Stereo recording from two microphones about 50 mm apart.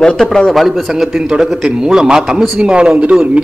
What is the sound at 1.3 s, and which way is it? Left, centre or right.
A man's voice, centre.